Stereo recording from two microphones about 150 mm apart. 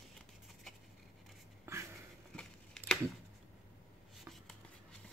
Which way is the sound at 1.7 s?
15° right (ahead or behind).